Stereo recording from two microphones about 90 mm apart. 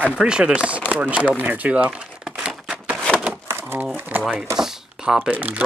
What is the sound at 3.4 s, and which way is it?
Pigeon, 25° right (ahead or behind).